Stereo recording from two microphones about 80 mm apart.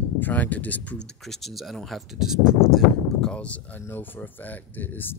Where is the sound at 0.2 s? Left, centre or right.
Left.